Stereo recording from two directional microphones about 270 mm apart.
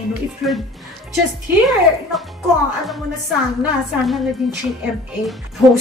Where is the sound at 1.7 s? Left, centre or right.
Centre.